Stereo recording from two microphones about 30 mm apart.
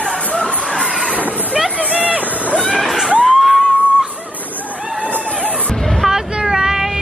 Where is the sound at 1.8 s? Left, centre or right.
Right.